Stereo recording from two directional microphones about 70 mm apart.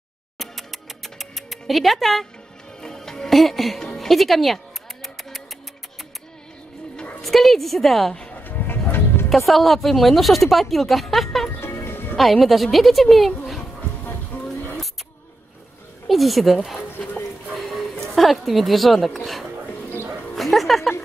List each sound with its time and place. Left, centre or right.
0.4 s music: centre
2.8 s speech: centre
5.0 s a sound: centre
7.0 s a sound: centre
7.2 s speech: centre
8.5 s music: left
9.5 s speech: centre
11.6 s music: left
12.2 s speech: centre
16.1 s speech: centre
17.6 s a sound: centre
18.1 s speech: centre
20.3 s music: centre